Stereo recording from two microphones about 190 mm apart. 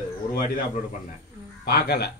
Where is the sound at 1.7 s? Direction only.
55° left (ahead or behind).